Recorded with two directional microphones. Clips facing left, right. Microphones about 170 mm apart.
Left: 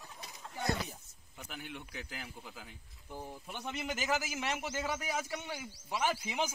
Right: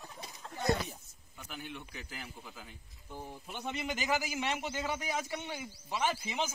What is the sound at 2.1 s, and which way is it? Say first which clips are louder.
Speech: even; 10° left (ahead or behind).